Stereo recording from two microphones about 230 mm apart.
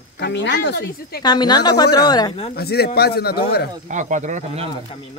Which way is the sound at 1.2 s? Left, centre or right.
Centre.